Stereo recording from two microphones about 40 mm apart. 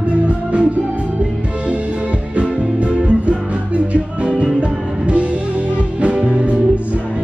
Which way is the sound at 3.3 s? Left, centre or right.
Right.